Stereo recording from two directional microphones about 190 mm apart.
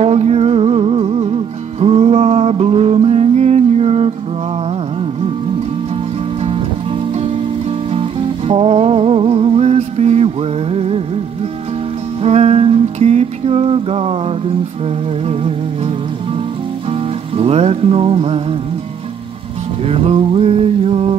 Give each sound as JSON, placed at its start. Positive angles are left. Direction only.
{"t": 0.0, "sound": "music", "side_deg": -35}
{"t": 7.9, "sound": "music", "side_deg": -30}
{"t": 12.2, "sound": "music", "side_deg": -30}
{"t": 16.9, "sound": "music", "side_deg": -30}
{"t": 19.9, "sound": "music", "side_deg": -30}